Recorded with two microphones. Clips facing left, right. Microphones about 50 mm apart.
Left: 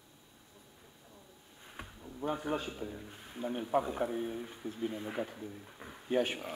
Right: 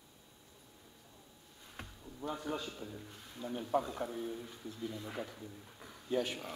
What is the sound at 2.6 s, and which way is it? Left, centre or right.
A man's voice, centre.